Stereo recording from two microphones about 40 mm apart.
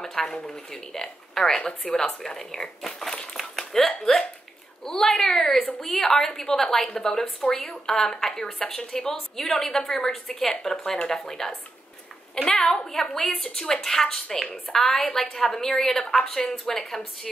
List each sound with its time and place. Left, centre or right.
0.0 s a woman's voice: centre
1.6 s speech: left
2.2 s a woman's voice: centre
3.3 s a sound: centre
3.8 s a woman's voice: centre